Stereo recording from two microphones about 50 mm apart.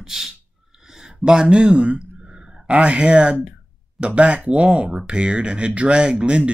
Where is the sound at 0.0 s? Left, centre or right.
Centre.